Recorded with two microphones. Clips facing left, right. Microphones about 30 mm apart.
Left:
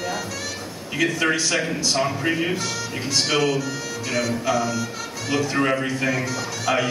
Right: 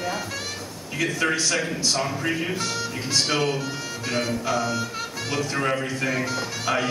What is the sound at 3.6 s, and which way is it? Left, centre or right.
Music, right.